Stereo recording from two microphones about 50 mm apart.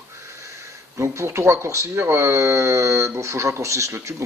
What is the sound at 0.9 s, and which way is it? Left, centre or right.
Speech, right.